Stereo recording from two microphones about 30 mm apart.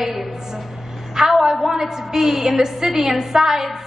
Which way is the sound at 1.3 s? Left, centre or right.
Centre.